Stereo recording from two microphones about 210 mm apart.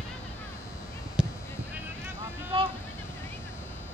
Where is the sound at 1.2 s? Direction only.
5° right (ahead or behind).